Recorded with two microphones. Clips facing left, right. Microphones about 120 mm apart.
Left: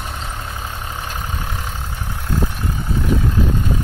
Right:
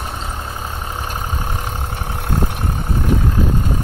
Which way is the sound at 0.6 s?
45° right (ahead or behind).